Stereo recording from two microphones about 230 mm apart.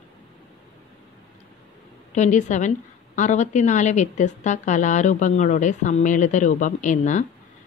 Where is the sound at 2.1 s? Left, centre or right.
Left.